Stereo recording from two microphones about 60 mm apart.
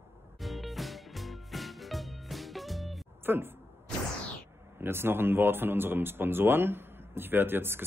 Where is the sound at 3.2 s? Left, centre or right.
Right.